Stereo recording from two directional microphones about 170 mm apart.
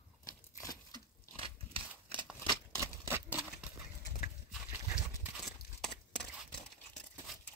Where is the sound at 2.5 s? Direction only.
15° right (ahead or behind).